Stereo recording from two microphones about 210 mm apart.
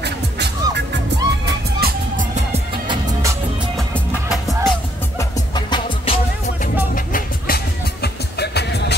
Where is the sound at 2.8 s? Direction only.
20° right (ahead or behind).